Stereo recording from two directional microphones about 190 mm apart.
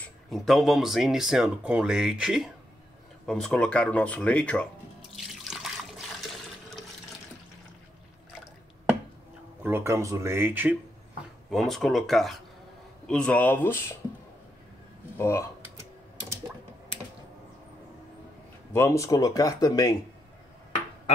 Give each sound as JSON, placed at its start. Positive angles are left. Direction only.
{"t": 0.3, "sound": "speech", "side_deg": 0}
{"t": 5.1, "sound": "water", "side_deg": 0}
{"t": 9.6, "sound": "speech", "side_deg": -10}
{"t": 11.5, "sound": "speech", "side_deg": 0}
{"t": 15.1, "sound": "speech", "side_deg": 15}
{"t": 18.7, "sound": "speech", "side_deg": 15}